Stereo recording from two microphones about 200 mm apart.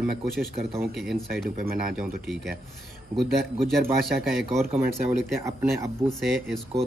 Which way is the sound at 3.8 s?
50° right (ahead or behind).